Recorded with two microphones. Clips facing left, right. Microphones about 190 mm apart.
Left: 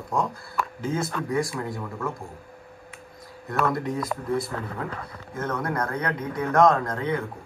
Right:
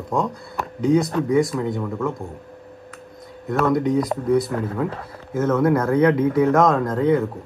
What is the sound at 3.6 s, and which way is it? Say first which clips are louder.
Speech: right 7 dB; centre (ahead or behind).